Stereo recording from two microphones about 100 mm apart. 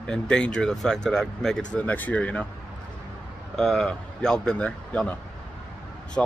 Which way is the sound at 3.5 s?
Centre (ahead or behind).